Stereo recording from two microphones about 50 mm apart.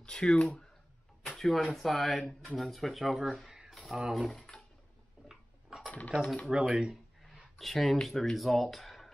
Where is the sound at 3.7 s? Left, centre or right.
Centre.